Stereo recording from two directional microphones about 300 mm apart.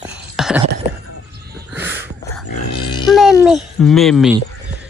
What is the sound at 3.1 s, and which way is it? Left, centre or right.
A child's voice, centre.